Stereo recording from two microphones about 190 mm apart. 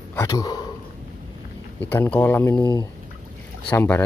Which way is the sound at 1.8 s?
10° left (ahead or behind).